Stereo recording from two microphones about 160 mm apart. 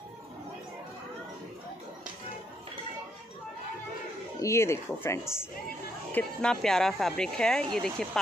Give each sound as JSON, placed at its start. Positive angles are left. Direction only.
{"t": 4.4, "sound": "speech", "side_deg": 15}
{"t": 6.1, "sound": "speech", "side_deg": 5}